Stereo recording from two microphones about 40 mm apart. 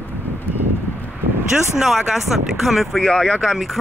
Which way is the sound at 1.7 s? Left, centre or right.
Centre.